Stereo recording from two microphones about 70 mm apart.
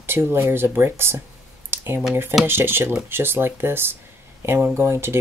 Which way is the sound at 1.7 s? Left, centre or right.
Right.